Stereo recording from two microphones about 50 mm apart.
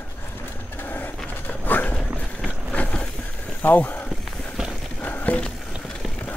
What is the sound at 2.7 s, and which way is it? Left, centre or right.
Vehicle, left.